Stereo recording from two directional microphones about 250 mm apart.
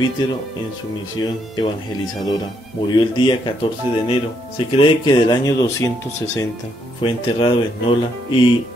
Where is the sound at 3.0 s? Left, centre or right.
Centre.